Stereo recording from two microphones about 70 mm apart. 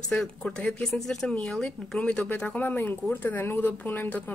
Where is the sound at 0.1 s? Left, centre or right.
Centre.